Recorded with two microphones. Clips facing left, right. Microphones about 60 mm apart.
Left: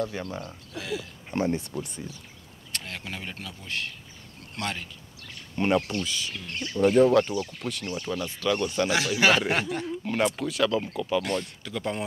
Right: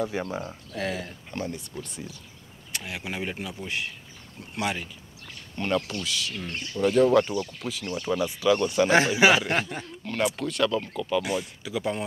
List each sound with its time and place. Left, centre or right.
0.0 s speech: centre
0.7 s speech: right
1.3 s speech: left
2.7 s speech: centre
5.6 s speech: left
6.7 s speech: centre
8.8 s speech: right
9.3 s speech: centre
9.8 s speech: centre